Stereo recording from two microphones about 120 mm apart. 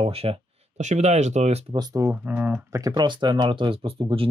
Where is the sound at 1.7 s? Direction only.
25° right (ahead or behind).